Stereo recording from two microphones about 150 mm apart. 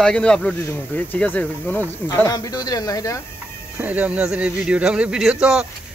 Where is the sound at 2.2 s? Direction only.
25° left (ahead or behind).